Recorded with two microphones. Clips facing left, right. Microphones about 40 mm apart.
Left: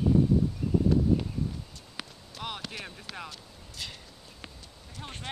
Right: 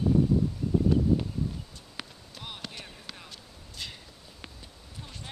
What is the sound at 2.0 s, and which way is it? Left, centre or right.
Basketball bounce, centre.